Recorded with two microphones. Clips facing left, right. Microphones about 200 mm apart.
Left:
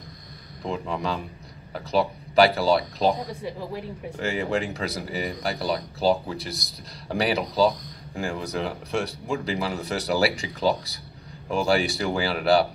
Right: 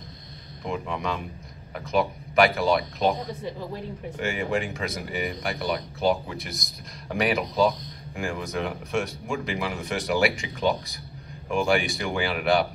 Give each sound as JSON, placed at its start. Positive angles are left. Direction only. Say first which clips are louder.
{"t": 0.7, "sound": "speech", "louder": "left 1 dB", "side_deg": 35}
{"t": 4.2, "sound": "speech", "louder": "left 1 dB", "side_deg": 35}